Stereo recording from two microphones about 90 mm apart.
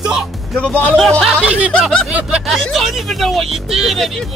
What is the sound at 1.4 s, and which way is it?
Speech, 15° right (ahead or behind).